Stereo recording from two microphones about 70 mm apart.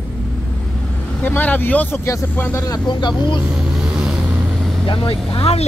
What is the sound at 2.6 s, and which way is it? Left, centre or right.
Speech, left.